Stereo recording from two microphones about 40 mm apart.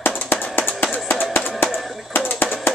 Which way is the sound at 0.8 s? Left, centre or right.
Left.